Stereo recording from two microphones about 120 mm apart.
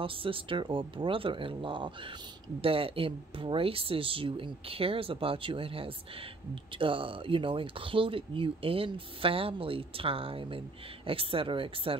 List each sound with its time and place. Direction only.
0.0 s speech: 50° right (ahead or behind)